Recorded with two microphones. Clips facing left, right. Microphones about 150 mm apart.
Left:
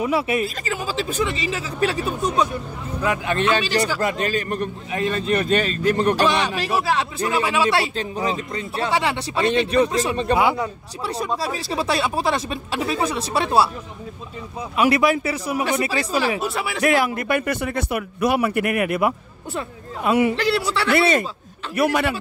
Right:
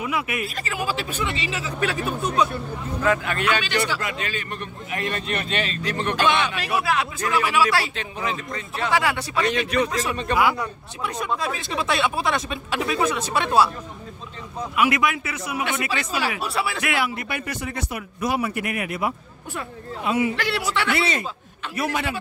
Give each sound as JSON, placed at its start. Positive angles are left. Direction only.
{"t": 0.0, "sound": "a man's voice", "side_deg": 30}
{"t": 2.5, "sound": "a man's voice", "side_deg": 15}
{"t": 14.8, "sound": "a man's voice", "side_deg": 35}